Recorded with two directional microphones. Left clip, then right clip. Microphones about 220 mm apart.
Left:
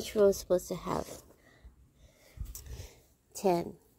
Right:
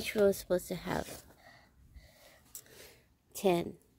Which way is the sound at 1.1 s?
20° right (ahead or behind).